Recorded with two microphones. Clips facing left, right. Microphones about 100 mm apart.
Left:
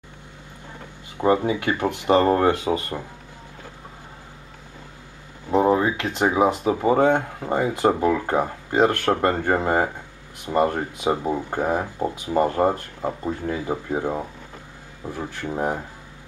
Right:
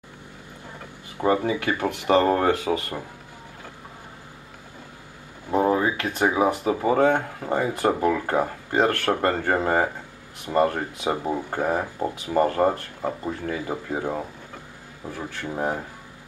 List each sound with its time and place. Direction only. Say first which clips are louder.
1.1 s speech: left 2 dB; 20° left (ahead or behind)
5.5 s a sound: left 3 dB; 20° left (ahead or behind)
6.1 s speech: left 2 dB; 20° left (ahead or behind)